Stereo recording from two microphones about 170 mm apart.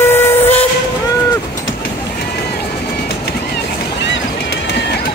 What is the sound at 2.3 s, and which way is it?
Vehicle, 70° left (ahead or behind).